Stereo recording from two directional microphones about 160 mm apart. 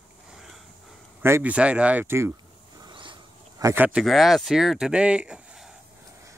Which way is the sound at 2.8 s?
30° right (ahead or behind).